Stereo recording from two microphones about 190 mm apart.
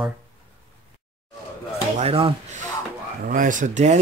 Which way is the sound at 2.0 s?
30° right (ahead or behind).